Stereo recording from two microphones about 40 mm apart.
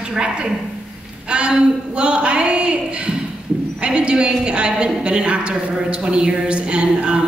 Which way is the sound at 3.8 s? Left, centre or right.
Right.